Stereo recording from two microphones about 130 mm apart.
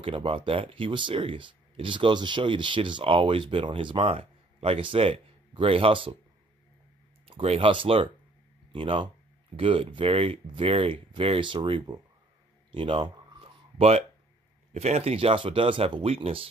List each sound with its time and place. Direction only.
0.0 s speech: 45° right (ahead or behind)
7.2 s speech: 50° right (ahead or behind)
12.7 s a sound: 45° right (ahead or behind)
14.7 s speech: 55° right (ahead or behind)